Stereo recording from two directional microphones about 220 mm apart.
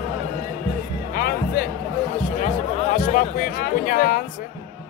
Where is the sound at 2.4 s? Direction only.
35° left (ahead or behind).